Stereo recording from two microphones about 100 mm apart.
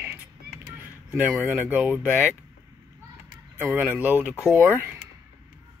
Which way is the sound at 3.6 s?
15° right (ahead or behind).